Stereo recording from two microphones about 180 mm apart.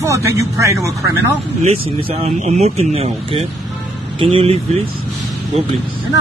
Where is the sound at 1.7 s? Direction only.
35° right (ahead or behind).